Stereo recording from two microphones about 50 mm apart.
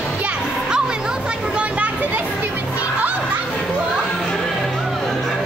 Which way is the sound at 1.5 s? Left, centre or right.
Right.